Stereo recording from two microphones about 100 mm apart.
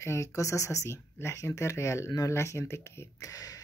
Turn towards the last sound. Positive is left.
turn(degrees=35)  # may be behind; listen again after turning